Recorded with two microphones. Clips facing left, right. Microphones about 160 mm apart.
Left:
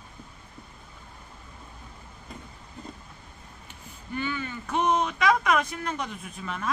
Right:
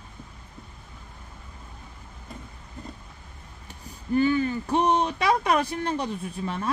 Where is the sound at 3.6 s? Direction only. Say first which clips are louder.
Right 10 dB; 35° right (ahead or behind).